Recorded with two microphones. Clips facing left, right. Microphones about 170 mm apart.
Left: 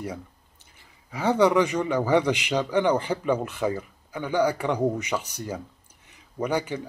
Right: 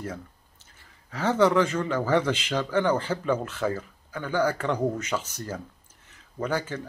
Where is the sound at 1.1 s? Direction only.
15° left (ahead or behind).